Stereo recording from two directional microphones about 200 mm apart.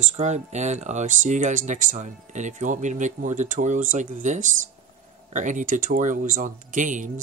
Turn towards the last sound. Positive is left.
turn(degrees=-40)  # may be behind; listen again after turning